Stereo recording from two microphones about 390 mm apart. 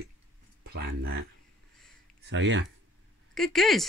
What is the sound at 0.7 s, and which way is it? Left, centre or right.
Speech, right.